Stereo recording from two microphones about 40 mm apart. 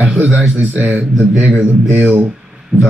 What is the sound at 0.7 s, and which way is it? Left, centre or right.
Speech, right.